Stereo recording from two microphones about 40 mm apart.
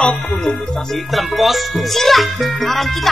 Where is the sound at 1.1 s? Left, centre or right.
Centre.